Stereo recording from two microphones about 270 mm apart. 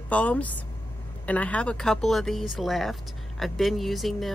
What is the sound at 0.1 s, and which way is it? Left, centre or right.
Speech, centre.